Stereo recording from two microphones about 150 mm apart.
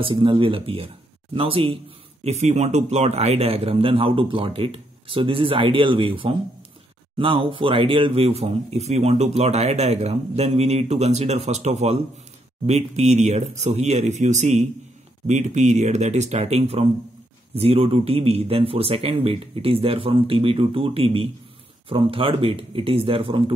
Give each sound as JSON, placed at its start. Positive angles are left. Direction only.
{"t": 0.0, "sound": "a man's voice", "side_deg": -35}